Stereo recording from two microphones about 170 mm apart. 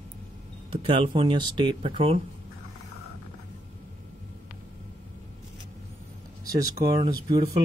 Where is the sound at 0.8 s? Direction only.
30° right (ahead or behind).